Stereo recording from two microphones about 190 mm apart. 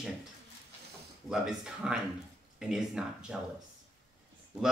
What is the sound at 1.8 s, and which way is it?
Speech, 5° right (ahead or behind).